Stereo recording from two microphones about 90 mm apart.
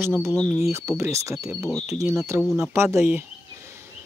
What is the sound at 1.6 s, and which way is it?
Speech, 5° right (ahead or behind).